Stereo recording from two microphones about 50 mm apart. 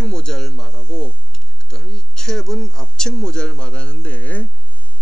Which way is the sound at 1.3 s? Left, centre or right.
Centre.